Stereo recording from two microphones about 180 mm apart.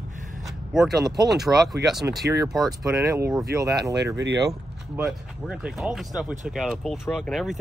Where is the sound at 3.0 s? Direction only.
15° right (ahead or behind).